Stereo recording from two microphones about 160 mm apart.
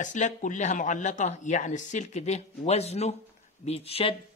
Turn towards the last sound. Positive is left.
turn(degrees=35)  # may be behind; listen again after turning